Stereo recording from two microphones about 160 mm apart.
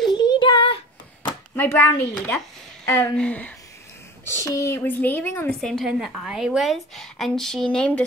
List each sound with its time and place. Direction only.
0.1 s a sound: 25° left (ahead or behind)
1.5 s a woman's voice: 10° left (ahead or behind)
4.4 s speech: 20° left (ahead or behind)
5.5 s a woman's voice: centre (ahead or behind)